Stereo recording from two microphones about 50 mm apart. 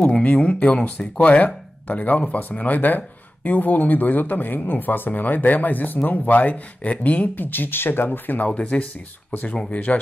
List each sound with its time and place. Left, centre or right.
0.0 s speech: left
7.4 s speech: left
8.5 s speech: left